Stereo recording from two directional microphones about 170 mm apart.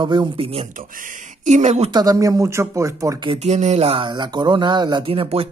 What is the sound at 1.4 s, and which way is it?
Speech, 45° right (ahead or behind).